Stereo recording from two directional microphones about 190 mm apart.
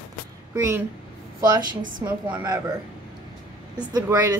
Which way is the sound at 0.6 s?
10° right (ahead or behind).